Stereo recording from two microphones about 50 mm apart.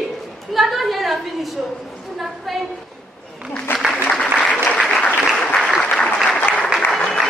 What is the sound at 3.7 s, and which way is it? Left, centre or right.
Applause, left.